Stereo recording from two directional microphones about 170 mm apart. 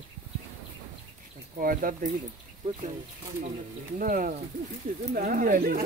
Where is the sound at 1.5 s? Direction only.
55° right (ahead or behind).